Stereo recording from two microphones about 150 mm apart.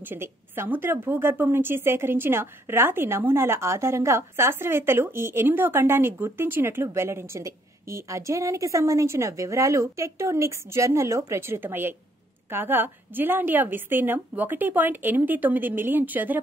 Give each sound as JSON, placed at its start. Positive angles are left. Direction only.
{"t": 0.1, "sound": "a woman's voice", "side_deg": -15}